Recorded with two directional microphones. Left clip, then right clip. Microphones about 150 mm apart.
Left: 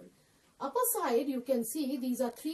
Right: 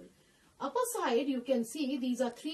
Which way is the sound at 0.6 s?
10° right (ahead or behind).